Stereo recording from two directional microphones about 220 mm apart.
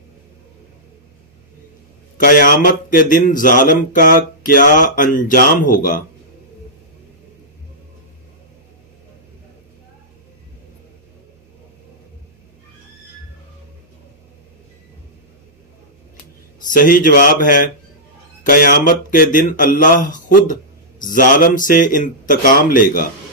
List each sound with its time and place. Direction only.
2.1 s a man's voice: 40° left (ahead or behind)
16.5 s a man's voice: 40° left (ahead or behind)